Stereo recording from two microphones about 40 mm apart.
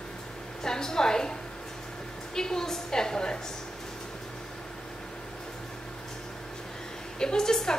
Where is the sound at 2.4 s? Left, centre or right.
Centre.